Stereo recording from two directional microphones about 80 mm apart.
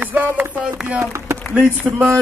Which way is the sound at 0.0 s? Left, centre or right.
Right.